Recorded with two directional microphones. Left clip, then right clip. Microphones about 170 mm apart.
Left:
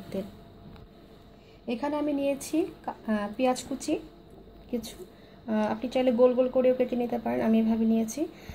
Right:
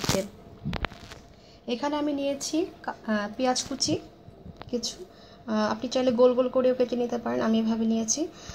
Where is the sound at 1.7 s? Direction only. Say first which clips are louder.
Right 1 dB; 10° right (ahead or behind).